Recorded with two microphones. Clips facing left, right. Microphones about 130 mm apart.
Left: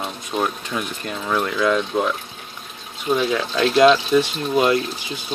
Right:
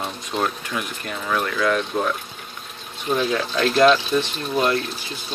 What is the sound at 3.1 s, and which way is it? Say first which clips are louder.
Speech: left 2 dB; 20° left (ahead or behind).